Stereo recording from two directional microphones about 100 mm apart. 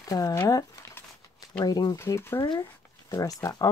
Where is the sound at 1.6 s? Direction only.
40° left (ahead or behind).